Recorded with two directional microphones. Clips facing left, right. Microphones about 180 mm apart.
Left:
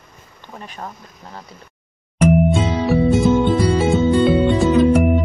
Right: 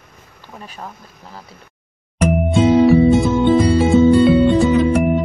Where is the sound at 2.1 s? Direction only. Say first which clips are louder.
Left 1 dB; centre (ahead or behind).